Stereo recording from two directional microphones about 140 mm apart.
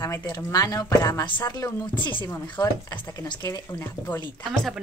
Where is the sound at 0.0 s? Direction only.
25° left (ahead or behind).